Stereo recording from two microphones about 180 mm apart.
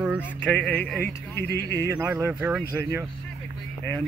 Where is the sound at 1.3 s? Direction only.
65° left (ahead or behind).